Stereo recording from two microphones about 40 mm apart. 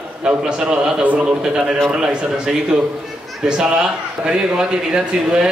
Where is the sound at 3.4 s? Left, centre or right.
Centre.